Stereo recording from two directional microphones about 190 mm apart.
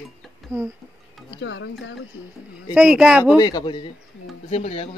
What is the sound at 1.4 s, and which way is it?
Speech, 80° left.